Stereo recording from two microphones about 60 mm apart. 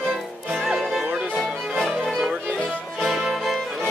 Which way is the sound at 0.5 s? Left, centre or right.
Centre.